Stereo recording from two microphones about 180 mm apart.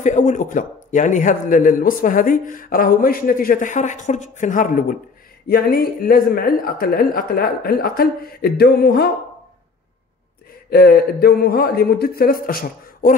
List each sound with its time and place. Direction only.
0.0 s a man's voice: 40° left (ahead or behind); by 9.1 s 60° left (ahead or behind)
10.7 s speech: 60° left (ahead or behind)